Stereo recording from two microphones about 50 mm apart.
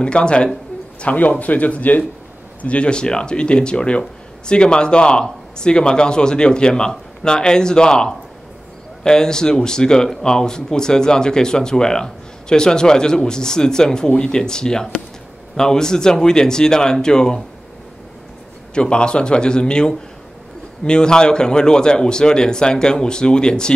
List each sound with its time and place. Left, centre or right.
0.0 s speech: left
1.0 s speech: left; by 17.4 s centre
18.8 s speech: centre